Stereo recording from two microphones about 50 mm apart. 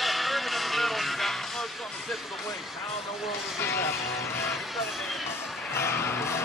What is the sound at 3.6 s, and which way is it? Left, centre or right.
Speech, left.